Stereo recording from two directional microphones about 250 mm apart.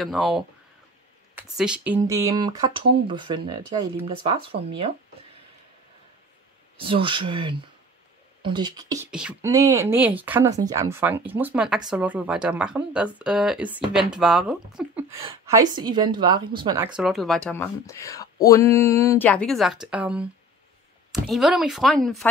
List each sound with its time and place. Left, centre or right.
0.0 s speech: centre
1.6 s speech: centre; by 4.9 s right
6.8 s speech: right
16.9 s speech: centre